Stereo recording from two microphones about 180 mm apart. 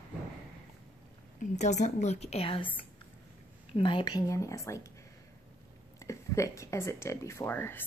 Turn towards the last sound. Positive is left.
turn(degrees=10)  # may be behind; listen again after turning